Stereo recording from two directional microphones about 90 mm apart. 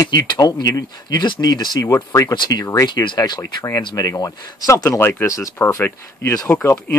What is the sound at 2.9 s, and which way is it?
Speech, 55° left (ahead or behind).